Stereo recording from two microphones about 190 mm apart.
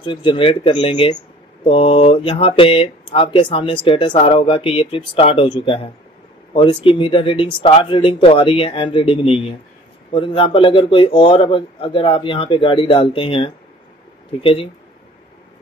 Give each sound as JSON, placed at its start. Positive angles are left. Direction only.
{"t": 0.0, "sound": "speech", "side_deg": 25}